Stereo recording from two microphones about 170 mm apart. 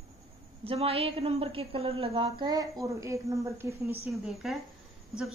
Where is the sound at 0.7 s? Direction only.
35° right (ahead or behind).